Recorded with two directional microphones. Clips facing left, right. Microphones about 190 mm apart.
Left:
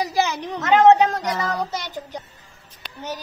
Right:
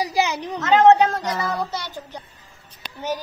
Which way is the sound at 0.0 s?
15° right (ahead or behind).